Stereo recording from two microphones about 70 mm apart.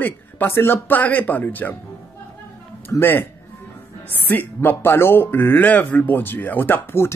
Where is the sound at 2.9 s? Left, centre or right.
Left.